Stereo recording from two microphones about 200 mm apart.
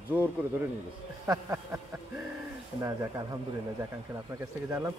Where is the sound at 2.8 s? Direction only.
15° right (ahead or behind).